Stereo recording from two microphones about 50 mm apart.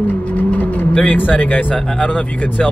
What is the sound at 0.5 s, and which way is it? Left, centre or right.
Vehicle, left.